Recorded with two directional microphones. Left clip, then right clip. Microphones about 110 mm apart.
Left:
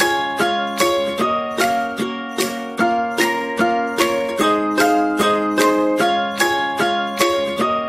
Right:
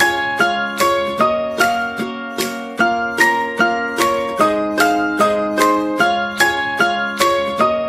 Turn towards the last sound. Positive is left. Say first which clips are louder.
# right 3 dB
turn(degrees=-25)  # may be behind; listen again after turning